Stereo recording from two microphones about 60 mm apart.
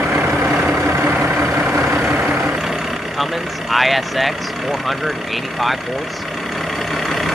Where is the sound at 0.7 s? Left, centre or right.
Right.